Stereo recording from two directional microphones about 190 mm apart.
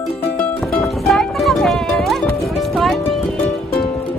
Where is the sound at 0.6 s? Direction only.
Centre (ahead or behind).